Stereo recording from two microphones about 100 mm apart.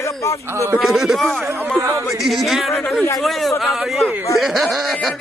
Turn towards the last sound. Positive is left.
turn(degrees=0)  # may be behind; listen again after turning